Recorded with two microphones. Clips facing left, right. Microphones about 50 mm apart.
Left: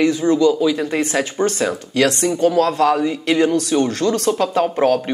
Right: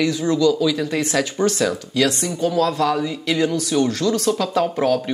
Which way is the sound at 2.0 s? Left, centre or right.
Left.